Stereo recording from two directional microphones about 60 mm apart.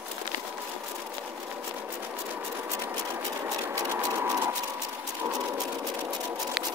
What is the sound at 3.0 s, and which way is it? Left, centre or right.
Engine, right.